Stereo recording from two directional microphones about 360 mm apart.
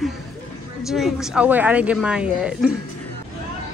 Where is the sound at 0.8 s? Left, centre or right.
Centre.